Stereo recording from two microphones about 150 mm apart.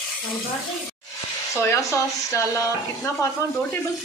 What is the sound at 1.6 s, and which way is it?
Speech, 15° left (ahead or behind).